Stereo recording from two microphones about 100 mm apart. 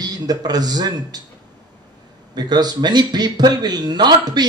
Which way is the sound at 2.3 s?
45° right (ahead or behind).